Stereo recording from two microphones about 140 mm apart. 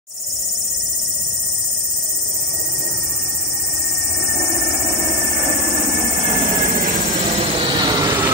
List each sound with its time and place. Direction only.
5.4 s jet engine: 20° right (ahead or behind)
6.5 s vehicle: 70° right (ahead or behind)
7.3 s vehicle: 35° right (ahead or behind)